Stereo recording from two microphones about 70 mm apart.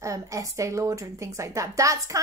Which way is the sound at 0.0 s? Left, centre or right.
Right.